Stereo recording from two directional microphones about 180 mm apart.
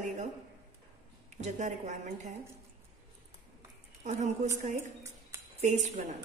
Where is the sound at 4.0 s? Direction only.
40° right (ahead or behind).